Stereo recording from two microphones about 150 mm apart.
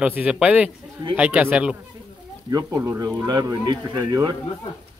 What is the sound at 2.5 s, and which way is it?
Speech, 20° right (ahead or behind).